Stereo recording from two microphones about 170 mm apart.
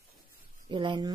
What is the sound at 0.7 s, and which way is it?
Speech, 25° right (ahead or behind).